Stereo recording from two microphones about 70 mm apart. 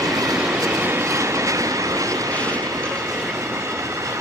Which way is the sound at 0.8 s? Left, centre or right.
Right.